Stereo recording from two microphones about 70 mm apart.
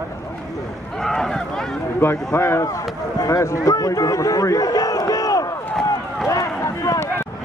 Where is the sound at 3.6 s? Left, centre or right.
Left.